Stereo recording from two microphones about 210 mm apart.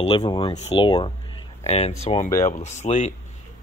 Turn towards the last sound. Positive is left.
turn(degrees=35)  # may be behind; listen again after turning